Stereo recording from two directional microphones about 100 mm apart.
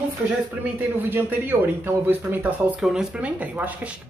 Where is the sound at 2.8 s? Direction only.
5° right (ahead or behind).